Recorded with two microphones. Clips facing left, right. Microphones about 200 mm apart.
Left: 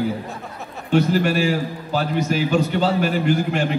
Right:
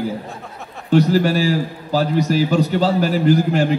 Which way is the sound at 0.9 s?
40° right (ahead or behind).